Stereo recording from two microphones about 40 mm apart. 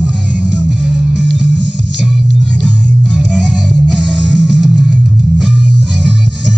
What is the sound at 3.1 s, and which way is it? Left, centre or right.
Music, right.